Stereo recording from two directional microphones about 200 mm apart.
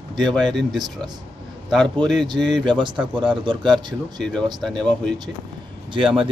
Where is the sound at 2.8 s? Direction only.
25° right (ahead or behind).